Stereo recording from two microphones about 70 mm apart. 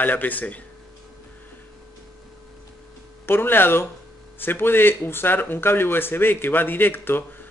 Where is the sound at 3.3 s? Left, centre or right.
Left.